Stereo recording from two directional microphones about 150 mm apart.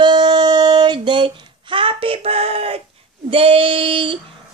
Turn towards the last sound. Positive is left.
turn(degrees=-35)  # may be behind; listen again after turning